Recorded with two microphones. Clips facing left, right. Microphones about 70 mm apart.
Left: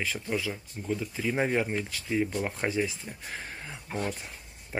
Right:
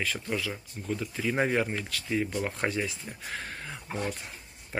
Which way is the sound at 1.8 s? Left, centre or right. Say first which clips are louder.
Left 1 dB; centre.